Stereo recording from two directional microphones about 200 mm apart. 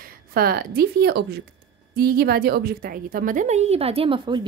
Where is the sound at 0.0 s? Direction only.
50° right (ahead or behind).